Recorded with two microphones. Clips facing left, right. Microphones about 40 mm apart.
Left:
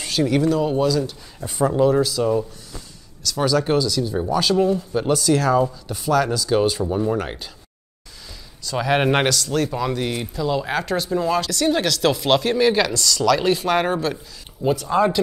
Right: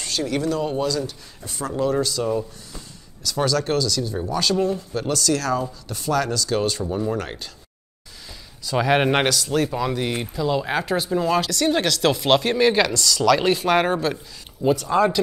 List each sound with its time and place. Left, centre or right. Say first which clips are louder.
0.0 s speech: left 5 dB; centre
1.4 s speech: left 7 dB; centre
1.9 s speech: left 4 dB; centre
5.0 s speech: left 4 dB; centre
8.3 s speech: right 2 dB; centre